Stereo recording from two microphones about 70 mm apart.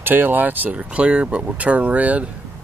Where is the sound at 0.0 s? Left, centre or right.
Right.